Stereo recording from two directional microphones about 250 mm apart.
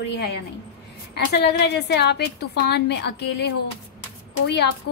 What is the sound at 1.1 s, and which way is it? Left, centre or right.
A woman's voice, left.